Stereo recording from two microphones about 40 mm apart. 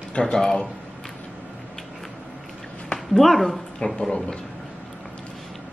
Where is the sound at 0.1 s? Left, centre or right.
Left.